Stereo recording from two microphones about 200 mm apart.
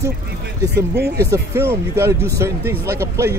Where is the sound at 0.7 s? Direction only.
55° right (ahead or behind).